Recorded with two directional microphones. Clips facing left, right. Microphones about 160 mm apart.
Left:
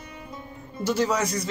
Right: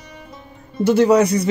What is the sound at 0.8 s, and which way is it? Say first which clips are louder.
Speech: right 11 dB; 60° right (ahead or behind).